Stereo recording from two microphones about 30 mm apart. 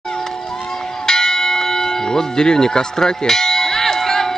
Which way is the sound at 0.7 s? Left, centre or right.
Centre.